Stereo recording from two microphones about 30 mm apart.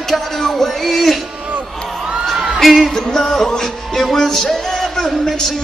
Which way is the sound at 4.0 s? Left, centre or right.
Centre.